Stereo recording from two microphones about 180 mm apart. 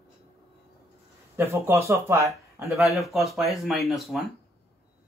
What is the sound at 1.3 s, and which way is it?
Speech, 15° right (ahead or behind).